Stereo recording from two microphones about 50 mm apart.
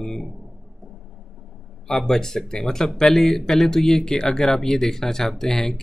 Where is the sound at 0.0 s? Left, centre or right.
Centre.